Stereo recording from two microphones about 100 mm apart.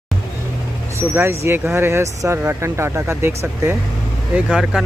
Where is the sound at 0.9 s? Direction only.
25° right (ahead or behind).